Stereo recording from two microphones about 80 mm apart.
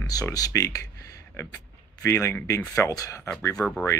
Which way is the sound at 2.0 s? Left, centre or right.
Left.